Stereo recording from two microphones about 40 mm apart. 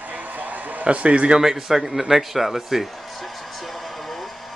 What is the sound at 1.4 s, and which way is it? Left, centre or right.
A man's voice, centre.